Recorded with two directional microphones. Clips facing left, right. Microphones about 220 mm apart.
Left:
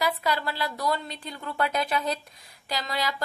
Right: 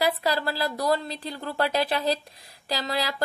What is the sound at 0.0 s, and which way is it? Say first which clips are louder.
A woman's voice: right 3 dB; 35° right (ahead or behind).